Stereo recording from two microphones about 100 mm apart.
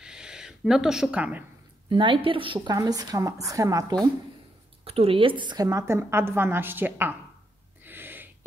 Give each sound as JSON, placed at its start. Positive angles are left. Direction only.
{"t": 0.0, "sound": "a sound", "side_deg": -5}
{"t": 1.9, "sound": "a woman's voice", "side_deg": -55}
{"t": 2.7, "sound": "speech", "side_deg": -35}
{"t": 4.8, "sound": "a woman's voice", "side_deg": -75}
{"t": 5.7, "sound": "a woman's voice", "side_deg": -30}
{"t": 7.8, "sound": "gasp", "side_deg": -20}